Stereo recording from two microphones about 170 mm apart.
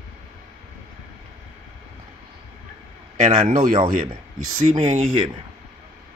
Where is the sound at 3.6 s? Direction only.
50° right (ahead or behind).